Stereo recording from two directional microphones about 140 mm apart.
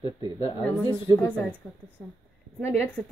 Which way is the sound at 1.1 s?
10° left (ahead or behind).